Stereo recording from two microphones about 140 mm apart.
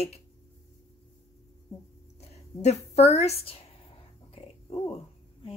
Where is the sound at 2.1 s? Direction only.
50° left (ahead or behind).